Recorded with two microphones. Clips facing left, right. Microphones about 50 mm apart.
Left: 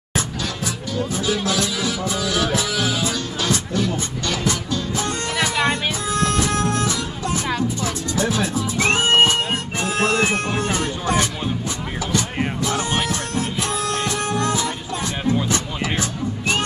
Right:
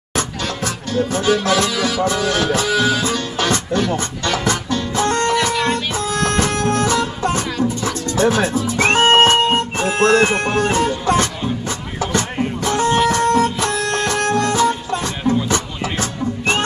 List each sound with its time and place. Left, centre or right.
0.7 s music: right
5.3 s music: centre
5.9 s music: right
13.1 s music: right
14.5 s music: right